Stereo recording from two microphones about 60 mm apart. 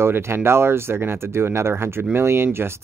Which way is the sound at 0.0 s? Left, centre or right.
Right.